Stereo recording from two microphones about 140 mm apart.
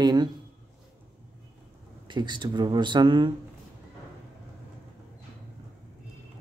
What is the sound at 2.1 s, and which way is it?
Speech, 35° right (ahead or behind).